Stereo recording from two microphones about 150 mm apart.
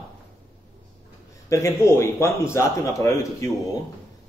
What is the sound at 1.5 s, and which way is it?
Speech, 20° left (ahead or behind).